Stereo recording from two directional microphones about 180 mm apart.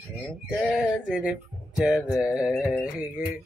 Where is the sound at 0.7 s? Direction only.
Centre (ahead or behind).